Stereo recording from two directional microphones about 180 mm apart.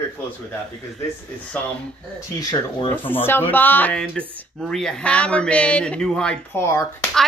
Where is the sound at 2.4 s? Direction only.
20° left (ahead or behind).